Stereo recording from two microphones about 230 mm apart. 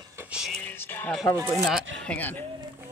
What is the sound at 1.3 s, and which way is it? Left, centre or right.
Speech, centre.